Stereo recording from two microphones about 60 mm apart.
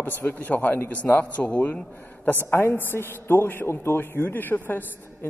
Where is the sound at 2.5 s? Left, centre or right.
Left.